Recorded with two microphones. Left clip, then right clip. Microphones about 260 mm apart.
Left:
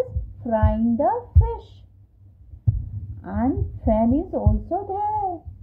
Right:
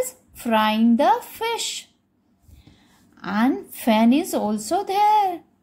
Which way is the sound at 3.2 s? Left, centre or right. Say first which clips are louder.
Right 3 dB; right.